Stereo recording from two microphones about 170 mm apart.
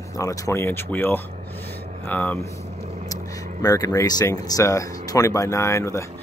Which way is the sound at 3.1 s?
20° left (ahead or behind).